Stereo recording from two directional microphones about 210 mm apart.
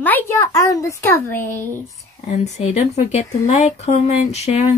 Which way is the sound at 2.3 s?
30° left (ahead or behind).